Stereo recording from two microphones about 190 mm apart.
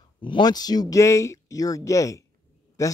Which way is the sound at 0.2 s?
25° left (ahead or behind).